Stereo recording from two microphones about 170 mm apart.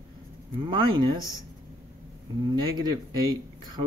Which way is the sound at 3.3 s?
25° right (ahead or behind).